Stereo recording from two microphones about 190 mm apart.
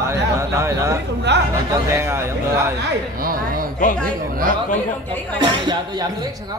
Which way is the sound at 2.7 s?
50° right (ahead or behind).